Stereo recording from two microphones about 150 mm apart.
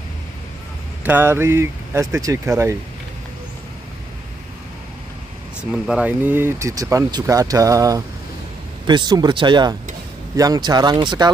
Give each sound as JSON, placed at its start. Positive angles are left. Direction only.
{"t": 1.0, "sound": "speech", "side_deg": -15}
{"t": 5.7, "sound": "speech", "side_deg": -5}